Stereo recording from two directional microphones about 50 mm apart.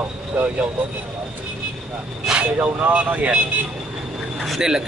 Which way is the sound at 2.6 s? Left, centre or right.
Right.